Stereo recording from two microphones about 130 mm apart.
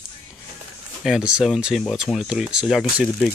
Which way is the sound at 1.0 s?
5° right (ahead or behind).